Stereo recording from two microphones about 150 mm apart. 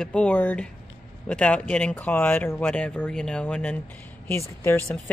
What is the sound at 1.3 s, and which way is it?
Speech, 5° left (ahead or behind).